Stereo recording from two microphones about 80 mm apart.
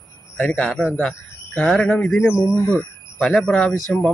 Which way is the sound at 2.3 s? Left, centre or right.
Left.